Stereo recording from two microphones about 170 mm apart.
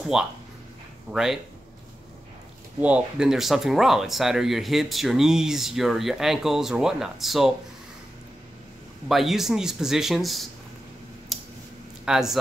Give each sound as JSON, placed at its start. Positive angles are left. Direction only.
{"t": 0.0, "sound": "speech", "side_deg": -5}
{"t": 2.8, "sound": "speech", "side_deg": -5}
{"t": 9.1, "sound": "speech", "side_deg": 0}
{"t": 11.3, "sound": "scissors", "side_deg": 0}
{"t": 12.0, "sound": "speech", "side_deg": -5}